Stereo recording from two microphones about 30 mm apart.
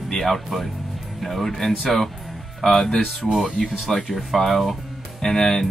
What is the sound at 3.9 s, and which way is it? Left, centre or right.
Speech, centre.